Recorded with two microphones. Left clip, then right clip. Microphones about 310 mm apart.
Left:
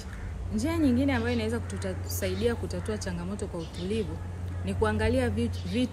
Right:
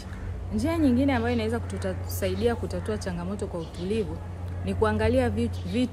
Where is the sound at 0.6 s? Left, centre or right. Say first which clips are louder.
Right 3 dB; centre.